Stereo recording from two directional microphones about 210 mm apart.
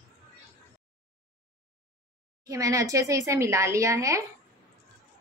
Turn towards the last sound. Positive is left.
turn(degrees=-15)  # may be behind; listen again after turning